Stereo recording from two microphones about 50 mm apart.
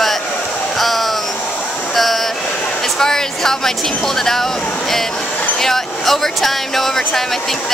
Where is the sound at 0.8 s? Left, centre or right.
Centre.